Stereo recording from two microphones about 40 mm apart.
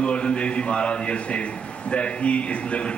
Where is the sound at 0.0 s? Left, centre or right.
Left.